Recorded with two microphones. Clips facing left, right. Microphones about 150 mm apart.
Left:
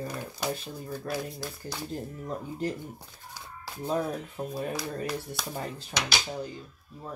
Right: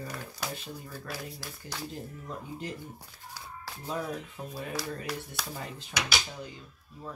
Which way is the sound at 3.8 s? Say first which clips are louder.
Left 5 dB; 35° left (ahead or behind).